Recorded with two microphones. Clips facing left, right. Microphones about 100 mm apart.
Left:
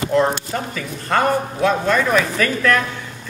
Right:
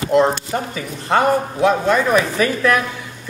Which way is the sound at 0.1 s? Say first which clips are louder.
Right 3 dB; 20° right (ahead or behind).